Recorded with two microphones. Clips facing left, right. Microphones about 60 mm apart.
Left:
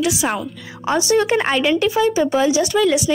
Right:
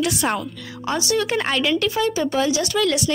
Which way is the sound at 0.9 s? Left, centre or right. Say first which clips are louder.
Left 5 dB; left.